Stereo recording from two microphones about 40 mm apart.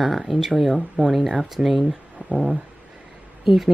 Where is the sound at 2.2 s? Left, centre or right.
Right.